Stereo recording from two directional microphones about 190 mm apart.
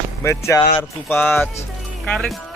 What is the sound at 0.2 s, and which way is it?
Speech, 15° left (ahead or behind).